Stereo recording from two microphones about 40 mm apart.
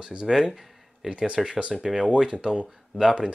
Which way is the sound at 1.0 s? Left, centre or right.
Right.